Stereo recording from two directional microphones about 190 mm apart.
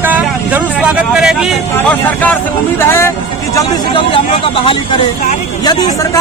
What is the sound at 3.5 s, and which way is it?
Speech, 25° left (ahead or behind).